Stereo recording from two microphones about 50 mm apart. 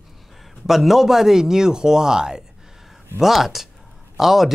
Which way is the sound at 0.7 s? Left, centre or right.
Centre.